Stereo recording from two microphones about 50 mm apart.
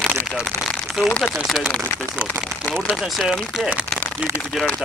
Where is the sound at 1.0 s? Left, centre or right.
Left.